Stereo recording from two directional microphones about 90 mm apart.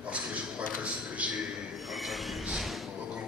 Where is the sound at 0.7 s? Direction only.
15° right (ahead or behind).